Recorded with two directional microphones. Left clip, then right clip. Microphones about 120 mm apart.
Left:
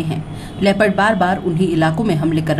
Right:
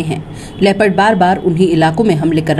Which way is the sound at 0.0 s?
40° right (ahead or behind).